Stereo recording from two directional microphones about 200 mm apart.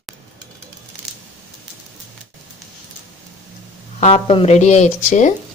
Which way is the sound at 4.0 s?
30° left (ahead or behind).